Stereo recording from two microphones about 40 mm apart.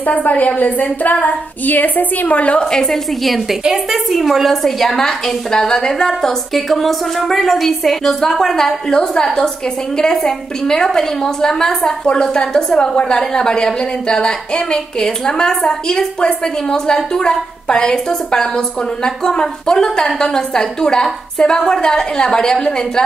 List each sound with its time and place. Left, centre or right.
0.0 s a woman's voice: left
2.7 s a woman's voice: centre
3.6 s a woman's voice: centre
6.5 s a woman's voice: centre